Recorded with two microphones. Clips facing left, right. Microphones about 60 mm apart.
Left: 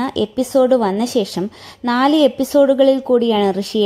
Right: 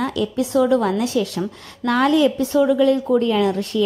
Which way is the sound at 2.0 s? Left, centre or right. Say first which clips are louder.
Left 4 dB; left.